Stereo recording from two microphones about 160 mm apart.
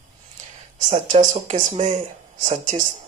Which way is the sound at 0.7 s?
50° right (ahead or behind).